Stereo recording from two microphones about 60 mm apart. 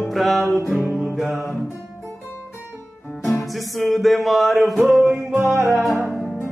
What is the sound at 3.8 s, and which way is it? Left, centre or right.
Music, centre.